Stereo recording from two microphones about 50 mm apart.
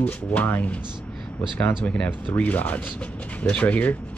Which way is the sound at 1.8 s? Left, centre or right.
Left.